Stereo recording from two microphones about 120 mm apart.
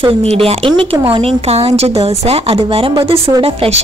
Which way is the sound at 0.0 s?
55° right (ahead or behind).